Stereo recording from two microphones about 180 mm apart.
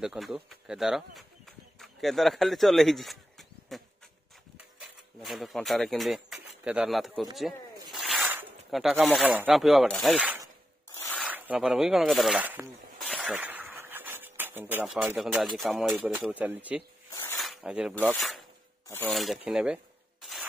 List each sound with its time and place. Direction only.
0.0 s speech: 5° right (ahead or behind)
13.1 s a sound: 5° right (ahead or behind)
15.9 s speech: 10° right (ahead or behind)
17.4 s cutlery: centre (ahead or behind)
18.1 s filing: centre (ahead or behind)
18.9 s filing: 15° left (ahead or behind)
19.1 s speech: centre (ahead or behind)